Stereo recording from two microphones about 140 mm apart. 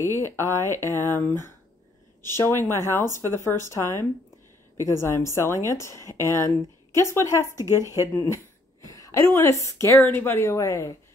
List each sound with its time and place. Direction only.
0.0 s a woman's voice: 20° left (ahead or behind)
7.4 s speech: 20° right (ahead or behind)
8.8 s a woman's voice: 25° left (ahead or behind)